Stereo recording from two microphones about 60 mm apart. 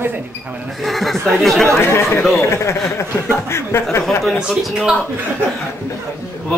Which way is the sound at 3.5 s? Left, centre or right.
Left.